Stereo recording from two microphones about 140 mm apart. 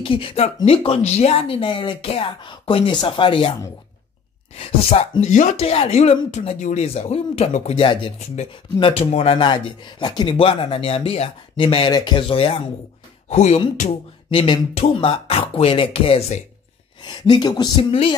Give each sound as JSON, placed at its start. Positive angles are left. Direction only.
{"t": 0.0, "sound": "speech", "side_deg": 40}
{"t": 4.6, "sound": "speech", "side_deg": 45}
{"t": 5.2, "sound": "speech", "side_deg": 60}
{"t": 13.3, "sound": "speech", "side_deg": 50}
{"t": 14.3, "sound": "speech", "side_deg": 40}
{"t": 17.0, "sound": "speech", "side_deg": 35}